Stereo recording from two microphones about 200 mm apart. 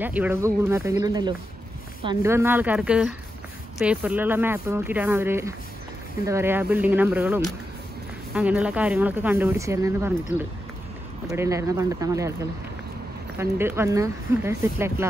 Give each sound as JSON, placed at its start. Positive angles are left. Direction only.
{"t": 0.0, "sound": "speech", "side_deg": -10}
{"t": 11.2, "sound": "speech", "side_deg": -15}
{"t": 13.4, "sound": "speech", "side_deg": -10}